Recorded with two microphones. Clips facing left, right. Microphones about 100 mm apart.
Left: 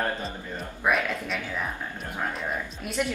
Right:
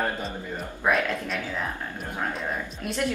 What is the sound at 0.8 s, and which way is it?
Speech, 5° left (ahead or behind).